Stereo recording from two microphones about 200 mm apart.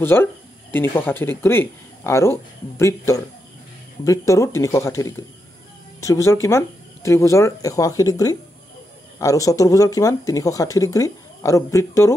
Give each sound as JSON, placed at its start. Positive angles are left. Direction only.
{"t": 0.0, "sound": "speech", "side_deg": 10}
{"t": 4.3, "sound": "speech", "side_deg": 15}